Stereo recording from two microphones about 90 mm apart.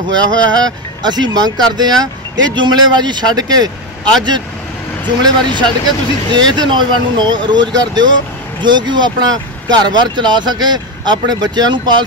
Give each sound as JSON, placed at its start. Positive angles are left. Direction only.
{"t": 0.0, "sound": "speech", "side_deg": -50}